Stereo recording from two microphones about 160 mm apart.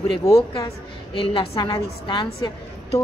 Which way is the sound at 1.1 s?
35° left (ahead or behind).